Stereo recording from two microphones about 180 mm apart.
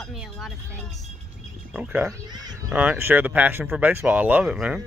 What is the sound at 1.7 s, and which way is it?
Speech, 10° right (ahead or behind).